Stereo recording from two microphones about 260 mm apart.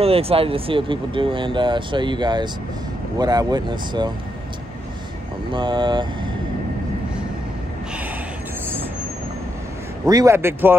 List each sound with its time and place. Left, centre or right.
0.0 s speech: right
5.5 s speech: centre
10.0 s speech: centre